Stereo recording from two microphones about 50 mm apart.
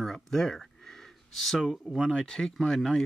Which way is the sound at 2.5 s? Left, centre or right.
Centre.